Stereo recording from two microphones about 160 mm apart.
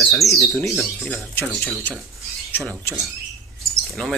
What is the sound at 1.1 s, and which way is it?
Speech, 10° left (ahead or behind).